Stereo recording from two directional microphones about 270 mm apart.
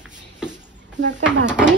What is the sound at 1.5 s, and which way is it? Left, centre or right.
Speech, centre.